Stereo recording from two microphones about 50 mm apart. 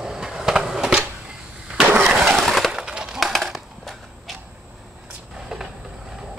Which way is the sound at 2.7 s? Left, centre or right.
Centre.